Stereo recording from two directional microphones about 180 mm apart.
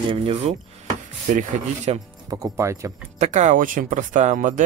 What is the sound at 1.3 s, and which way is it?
Speech, 45° right (ahead or behind).